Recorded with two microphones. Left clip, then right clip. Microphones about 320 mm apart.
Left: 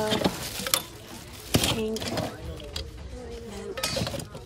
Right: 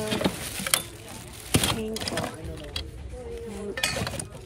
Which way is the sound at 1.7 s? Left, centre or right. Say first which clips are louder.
Left 1 dB; centre.